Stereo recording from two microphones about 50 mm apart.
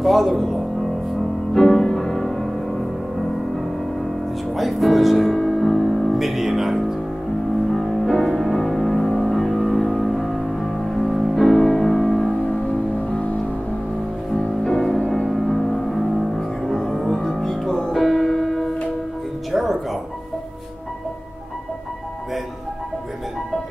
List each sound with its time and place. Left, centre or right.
0.0 s music: centre
4.6 s music: centre
7.7 s music: centre
9.2 s a sound: centre
9.9 s music: centre
13.0 s music: left
14.3 s music: centre
15.2 s music: centre